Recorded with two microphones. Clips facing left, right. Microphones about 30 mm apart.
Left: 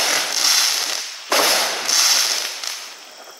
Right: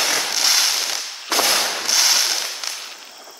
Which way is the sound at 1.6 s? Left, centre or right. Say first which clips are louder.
Left 1 dB; centre.